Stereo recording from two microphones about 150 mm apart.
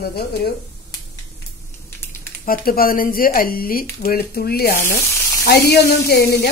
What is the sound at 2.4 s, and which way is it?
Speech, 75° left (ahead or behind).